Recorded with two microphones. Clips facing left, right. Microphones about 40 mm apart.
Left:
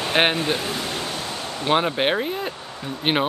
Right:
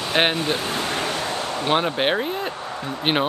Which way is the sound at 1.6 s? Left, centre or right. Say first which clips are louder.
Left 1 dB; centre.